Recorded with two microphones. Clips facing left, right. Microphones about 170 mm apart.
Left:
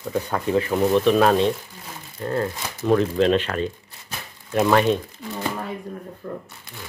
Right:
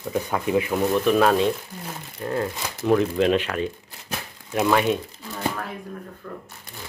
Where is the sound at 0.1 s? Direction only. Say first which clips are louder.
Left 1 dB; 15° right (ahead or behind).